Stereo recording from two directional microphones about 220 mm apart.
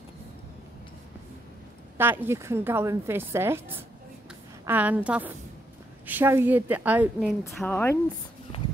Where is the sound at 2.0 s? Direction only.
10° right (ahead or behind).